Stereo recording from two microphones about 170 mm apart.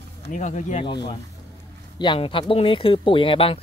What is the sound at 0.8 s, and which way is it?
Speech, 30° left (ahead or behind).